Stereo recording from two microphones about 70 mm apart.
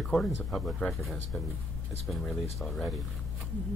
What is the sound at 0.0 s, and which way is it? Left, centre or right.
Speech, centre.